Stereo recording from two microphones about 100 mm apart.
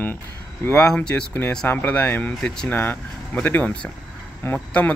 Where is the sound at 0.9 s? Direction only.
10° left (ahead or behind).